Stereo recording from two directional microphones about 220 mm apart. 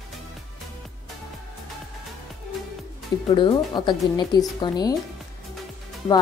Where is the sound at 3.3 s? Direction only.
20° left (ahead or behind).